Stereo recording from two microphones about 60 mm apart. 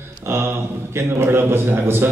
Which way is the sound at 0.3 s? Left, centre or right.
Right.